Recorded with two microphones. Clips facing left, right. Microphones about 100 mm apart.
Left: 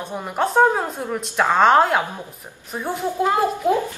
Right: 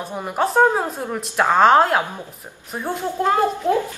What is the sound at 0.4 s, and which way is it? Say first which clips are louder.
A woman's voice: even; 5° right (ahead or behind).